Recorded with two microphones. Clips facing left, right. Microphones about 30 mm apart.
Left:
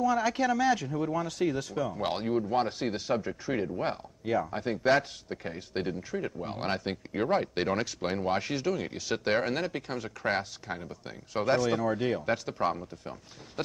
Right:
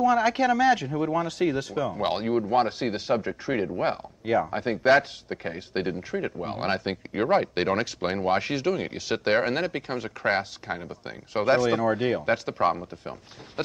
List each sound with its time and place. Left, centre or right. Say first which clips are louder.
0.0 s speech: right 5 dB; right